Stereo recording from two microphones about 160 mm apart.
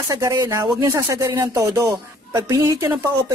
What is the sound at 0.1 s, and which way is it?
Speech, 20° right (ahead or behind).